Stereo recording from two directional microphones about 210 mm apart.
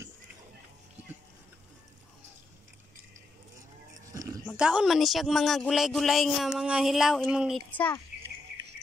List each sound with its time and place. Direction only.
4.1 s sheep: 15° right (ahead or behind)
4.5 s speech: 5° right (ahead or behind)
7.7 s speech: 10° left (ahead or behind)